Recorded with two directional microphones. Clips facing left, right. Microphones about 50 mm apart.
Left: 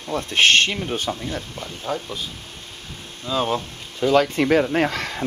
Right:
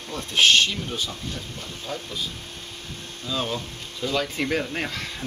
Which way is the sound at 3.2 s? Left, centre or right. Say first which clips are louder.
Left 6 dB; left.